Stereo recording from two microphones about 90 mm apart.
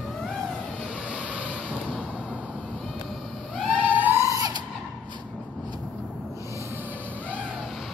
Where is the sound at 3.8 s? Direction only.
20° right (ahead or behind).